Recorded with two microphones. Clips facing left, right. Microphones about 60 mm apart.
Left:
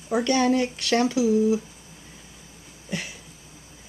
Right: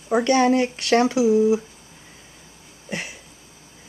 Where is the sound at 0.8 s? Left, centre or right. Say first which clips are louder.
Right 4 dB; right.